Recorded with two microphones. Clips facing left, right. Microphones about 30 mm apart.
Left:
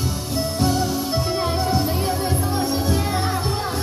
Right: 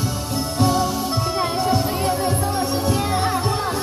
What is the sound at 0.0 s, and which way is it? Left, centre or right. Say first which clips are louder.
Music: even; centre.